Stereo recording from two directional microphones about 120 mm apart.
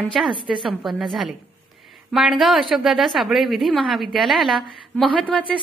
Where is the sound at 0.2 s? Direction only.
Centre (ahead or behind).